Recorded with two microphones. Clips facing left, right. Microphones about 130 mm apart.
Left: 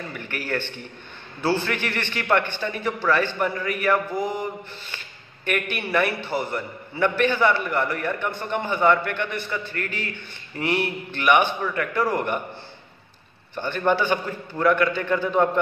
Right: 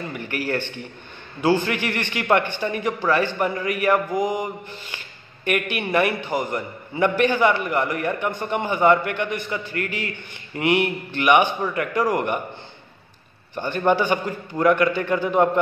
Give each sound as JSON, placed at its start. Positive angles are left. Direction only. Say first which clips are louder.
{"t": 0.1, "sound": "a sound", "louder": "right 4 dB", "side_deg": -10}
{"t": 0.5, "sound": "a man's voice", "louder": "right 2 dB", "side_deg": -15}
{"t": 10.6, "sound": "mantra", "louder": "right 4 dB", "side_deg": -60}
{"t": 11.1, "sound": "a man's voice", "louder": "right 1 dB", "side_deg": -10}
{"t": 13.6, "sound": "a man's voice", "louder": "right 2 dB", "side_deg": -10}